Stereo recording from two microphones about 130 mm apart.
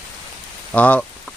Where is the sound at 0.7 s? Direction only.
10° left (ahead or behind).